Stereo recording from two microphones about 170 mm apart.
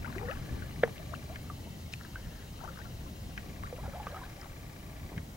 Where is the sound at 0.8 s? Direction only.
5° right (ahead or behind).